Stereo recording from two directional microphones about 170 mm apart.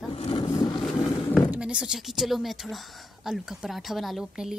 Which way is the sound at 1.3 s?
5° right (ahead or behind).